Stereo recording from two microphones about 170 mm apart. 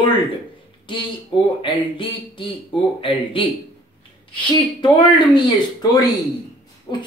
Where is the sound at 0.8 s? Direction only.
30° left (ahead or behind).